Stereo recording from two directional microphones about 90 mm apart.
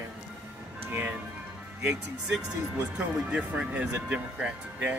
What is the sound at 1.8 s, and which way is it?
Speech, 10° right (ahead or behind).